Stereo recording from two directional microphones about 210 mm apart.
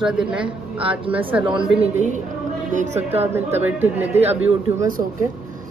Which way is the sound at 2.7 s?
35° right (ahead or behind).